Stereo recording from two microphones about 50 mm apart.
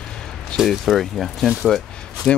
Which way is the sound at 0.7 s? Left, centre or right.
Centre.